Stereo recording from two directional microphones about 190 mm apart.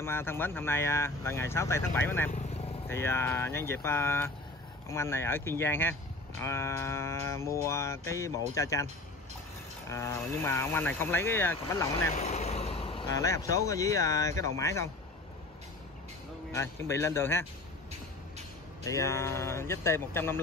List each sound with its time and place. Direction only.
0.0 s music: 10° left (ahead or behind)
9.8 s music: 15° left (ahead or behind)
12.2 s speech: 35° left (ahead or behind); by 14.9 s 15° left (ahead or behind)
16.5 s music: 15° left (ahead or behind)
18.9 s music: 15° left (ahead or behind)